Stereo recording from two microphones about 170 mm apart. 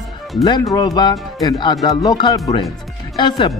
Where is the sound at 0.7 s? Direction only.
25° left (ahead or behind).